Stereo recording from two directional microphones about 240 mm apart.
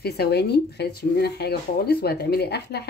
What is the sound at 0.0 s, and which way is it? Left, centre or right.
Speech, left.